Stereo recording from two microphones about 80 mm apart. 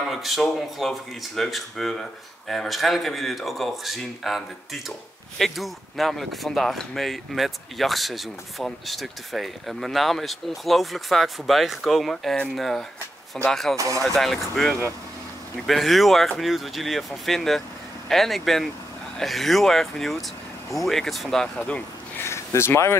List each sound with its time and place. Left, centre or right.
0.1 s speech: centre
5.4 s speech: centre
13.7 s speech: right
14.0 s speech: centre
22.2 s a sound: left